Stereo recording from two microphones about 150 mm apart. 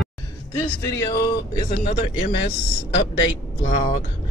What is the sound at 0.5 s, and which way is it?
Music, 25° left (ahead or behind).